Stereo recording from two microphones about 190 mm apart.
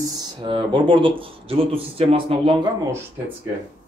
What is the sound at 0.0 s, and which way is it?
Speech, 25° right (ahead or behind).